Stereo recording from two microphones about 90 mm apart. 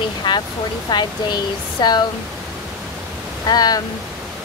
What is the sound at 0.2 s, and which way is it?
Speech, 55° left (ahead or behind).